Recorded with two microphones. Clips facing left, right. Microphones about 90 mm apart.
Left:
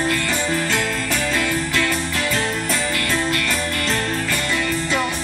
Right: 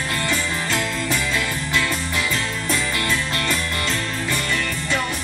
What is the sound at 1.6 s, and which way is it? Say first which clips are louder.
Music: left 2 dB; 20° right (ahead or behind).